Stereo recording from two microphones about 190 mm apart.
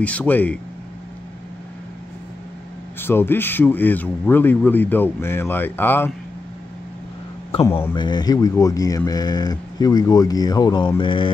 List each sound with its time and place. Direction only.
0.0 s a man's voice: 5° left (ahead or behind)
3.0 s a man's voice: 10° left (ahead or behind)
7.9 s speech: 25° left (ahead or behind)